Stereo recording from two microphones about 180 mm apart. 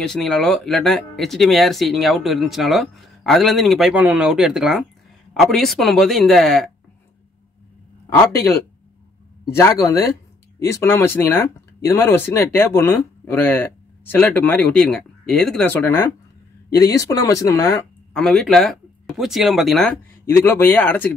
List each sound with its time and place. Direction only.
0.0 s speech: centre (ahead or behind)
9.6 s speech: 15° left (ahead or behind)
18.1 s speech: 5° left (ahead or behind)
20.2 s speech: 15° left (ahead or behind)